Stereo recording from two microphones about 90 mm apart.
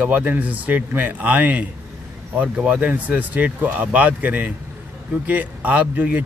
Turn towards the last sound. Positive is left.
turn(degrees=-15)  # may be behind; listen again after turning